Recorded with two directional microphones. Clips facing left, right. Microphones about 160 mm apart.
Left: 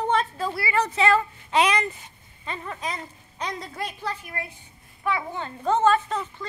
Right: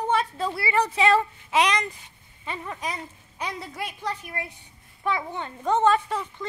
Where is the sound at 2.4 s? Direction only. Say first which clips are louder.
Even; 15° right (ahead or behind).